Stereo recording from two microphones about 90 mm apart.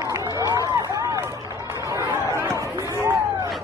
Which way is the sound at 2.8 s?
40° right (ahead or behind).